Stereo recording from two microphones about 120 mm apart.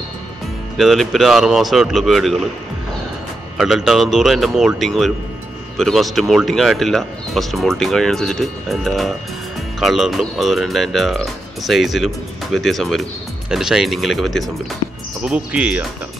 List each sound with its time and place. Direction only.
0.7 s speech: centre (ahead or behind)
3.5 s speech: centre (ahead or behind)
15.2 s speech: 10° right (ahead or behind)